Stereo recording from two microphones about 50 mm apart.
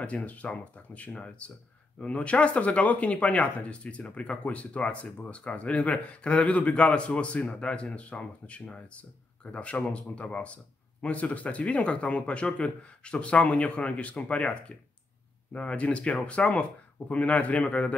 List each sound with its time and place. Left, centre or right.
0.0 s speech: left